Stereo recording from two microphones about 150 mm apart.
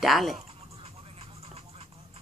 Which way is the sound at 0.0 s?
Centre (ahead or behind).